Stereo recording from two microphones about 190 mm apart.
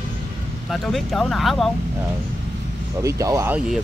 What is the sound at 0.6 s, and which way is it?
Speech, centre (ahead or behind).